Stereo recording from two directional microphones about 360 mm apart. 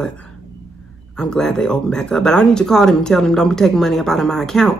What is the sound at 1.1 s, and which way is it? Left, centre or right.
Speech, centre.